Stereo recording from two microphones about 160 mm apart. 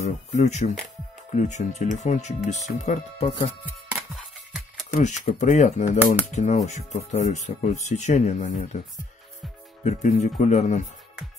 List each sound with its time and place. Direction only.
0.0 s speech: 45° left (ahead or behind)
4.1 s music: centre (ahead or behind)
4.9 s speech: 50° left (ahead or behind)
9.8 s speech: 45° left (ahead or behind)